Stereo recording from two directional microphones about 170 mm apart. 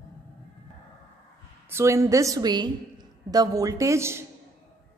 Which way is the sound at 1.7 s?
15° right (ahead or behind).